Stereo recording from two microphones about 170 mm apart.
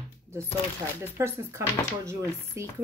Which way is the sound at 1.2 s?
15° right (ahead or behind).